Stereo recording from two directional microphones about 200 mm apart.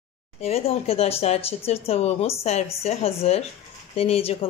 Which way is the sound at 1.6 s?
30° left (ahead or behind).